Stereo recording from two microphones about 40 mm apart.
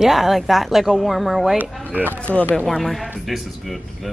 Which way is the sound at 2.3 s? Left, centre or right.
Left.